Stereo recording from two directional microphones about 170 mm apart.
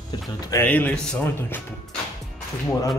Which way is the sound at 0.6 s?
10° left (ahead or behind).